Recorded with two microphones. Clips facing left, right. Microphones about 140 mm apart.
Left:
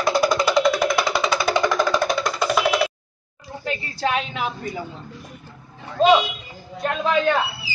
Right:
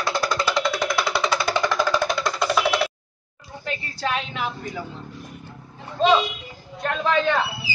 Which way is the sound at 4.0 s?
15° left (ahead or behind).